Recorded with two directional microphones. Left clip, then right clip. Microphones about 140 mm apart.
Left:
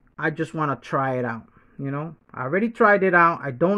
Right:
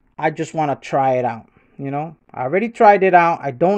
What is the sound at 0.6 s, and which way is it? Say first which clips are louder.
Speech: right 7 dB; 15° right (ahead or behind).